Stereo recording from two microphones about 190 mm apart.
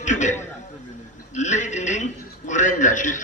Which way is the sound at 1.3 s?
40° left (ahead or behind).